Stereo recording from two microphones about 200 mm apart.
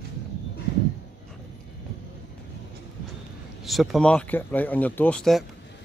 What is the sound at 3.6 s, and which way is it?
A man's voice, centre (ahead or behind).